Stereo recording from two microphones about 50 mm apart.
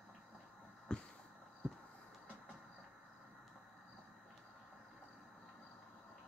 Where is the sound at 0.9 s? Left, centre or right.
Centre.